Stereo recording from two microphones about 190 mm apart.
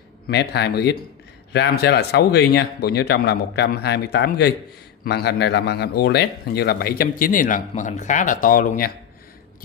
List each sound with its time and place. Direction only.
0.3 s speech: 60° left (ahead or behind)